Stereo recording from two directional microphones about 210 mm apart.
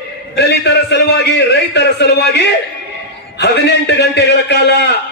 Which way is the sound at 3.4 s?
55° left (ahead or behind).